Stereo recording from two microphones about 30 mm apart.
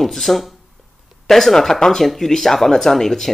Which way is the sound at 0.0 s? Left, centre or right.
Centre.